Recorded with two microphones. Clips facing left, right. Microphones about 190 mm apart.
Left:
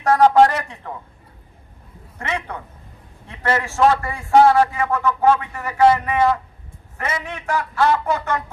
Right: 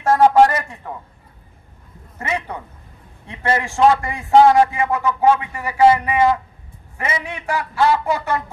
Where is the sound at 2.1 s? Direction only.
10° right (ahead or behind).